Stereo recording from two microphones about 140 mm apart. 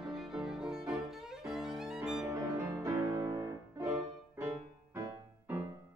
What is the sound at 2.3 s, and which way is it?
Music, 20° right (ahead or behind).